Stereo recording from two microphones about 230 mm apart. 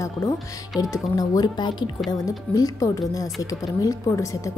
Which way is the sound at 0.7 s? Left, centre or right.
Centre.